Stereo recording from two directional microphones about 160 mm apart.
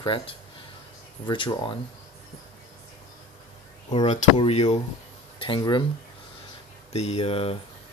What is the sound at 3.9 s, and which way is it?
Speech, 45° left (ahead or behind).